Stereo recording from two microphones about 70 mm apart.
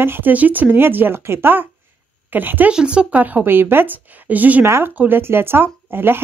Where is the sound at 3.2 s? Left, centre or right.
Right.